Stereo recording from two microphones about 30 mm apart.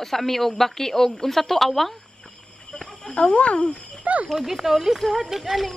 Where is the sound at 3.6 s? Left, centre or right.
Left.